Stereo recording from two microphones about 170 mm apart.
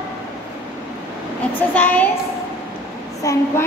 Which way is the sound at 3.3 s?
20° left (ahead or behind).